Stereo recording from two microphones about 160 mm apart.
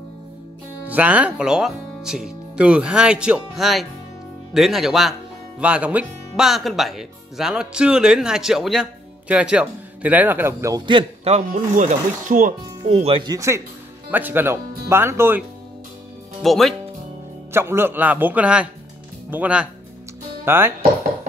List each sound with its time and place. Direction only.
0.8 s speech: 10° right (ahead or behind)
10.9 s a man's voice: 30° right (ahead or behind)
11.3 s speech: 50° right (ahead or behind)
12.8 s speech: 40° right (ahead or behind)
13.3 s speech: 20° right (ahead or behind)
16.4 s speech: centre (ahead or behind)
17.5 s speech: 15° right (ahead or behind)